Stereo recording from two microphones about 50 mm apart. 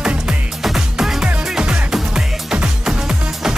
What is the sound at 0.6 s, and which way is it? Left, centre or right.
Music, centre.